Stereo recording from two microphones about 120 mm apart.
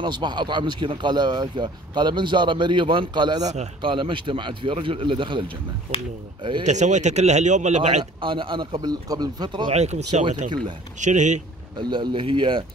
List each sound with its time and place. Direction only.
0.0 s speech: 40° right (ahead or behind)
6.6 s a man's voice: 80° right
8.0 s speech: 45° right (ahead or behind)
8.8 s speech: 35° right (ahead or behind)
9.7 s a man's voice: 65° right (ahead or behind)
11.0 s speech: 85° right
11.8 s speech: 40° right (ahead or behind)